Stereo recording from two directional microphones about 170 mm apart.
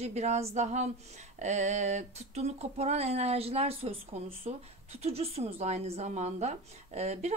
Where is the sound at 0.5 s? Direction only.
40° right (ahead or behind).